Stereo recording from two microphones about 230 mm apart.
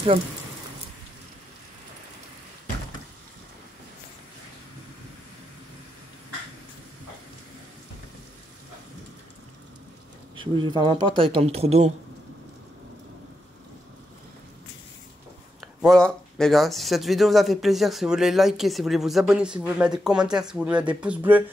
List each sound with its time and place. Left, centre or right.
10.3 s speech: right
15.8 s speech: centre